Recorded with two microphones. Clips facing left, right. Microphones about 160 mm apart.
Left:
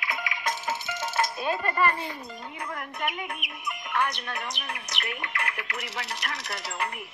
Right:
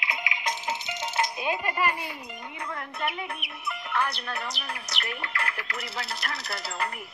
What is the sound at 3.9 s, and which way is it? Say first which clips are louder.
Speech: left 1 dB; 35° right (ahead or behind).